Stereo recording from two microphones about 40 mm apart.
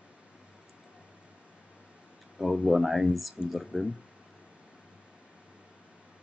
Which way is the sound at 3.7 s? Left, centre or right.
Centre.